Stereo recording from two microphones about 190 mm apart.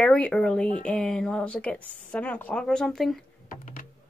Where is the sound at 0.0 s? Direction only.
5° left (ahead or behind).